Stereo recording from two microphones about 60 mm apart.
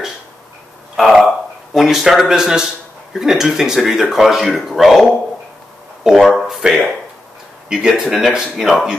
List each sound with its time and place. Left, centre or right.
0.9 s a sound: centre
3.1 s speech: centre
6.0 s speech: centre